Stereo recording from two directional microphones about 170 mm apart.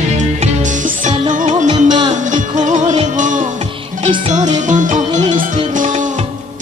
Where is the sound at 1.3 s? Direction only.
45° right (ahead or behind).